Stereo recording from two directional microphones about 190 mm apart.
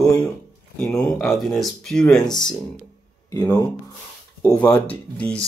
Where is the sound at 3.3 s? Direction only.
20° left (ahead or behind).